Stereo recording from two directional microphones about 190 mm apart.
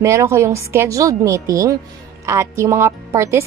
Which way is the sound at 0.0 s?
15° right (ahead or behind).